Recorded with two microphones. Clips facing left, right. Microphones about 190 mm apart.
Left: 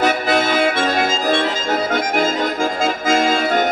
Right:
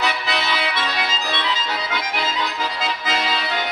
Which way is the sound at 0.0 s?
45° left (ahead or behind).